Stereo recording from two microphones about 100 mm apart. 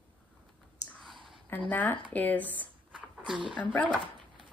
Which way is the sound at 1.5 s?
15° left (ahead or behind).